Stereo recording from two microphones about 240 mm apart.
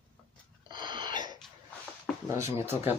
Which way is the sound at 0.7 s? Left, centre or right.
Centre.